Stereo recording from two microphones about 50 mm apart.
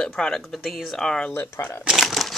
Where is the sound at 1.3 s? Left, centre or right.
Left.